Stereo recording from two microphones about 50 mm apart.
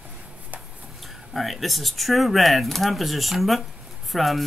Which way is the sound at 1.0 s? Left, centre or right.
Centre.